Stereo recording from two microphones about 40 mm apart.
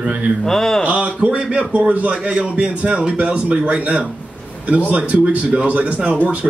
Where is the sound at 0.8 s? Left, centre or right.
Right.